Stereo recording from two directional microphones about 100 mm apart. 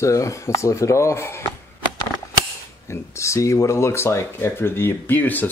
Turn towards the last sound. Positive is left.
turn(degrees=20)  # may be behind; listen again after turning